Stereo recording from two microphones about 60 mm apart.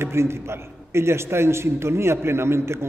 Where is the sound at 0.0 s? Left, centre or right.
Right.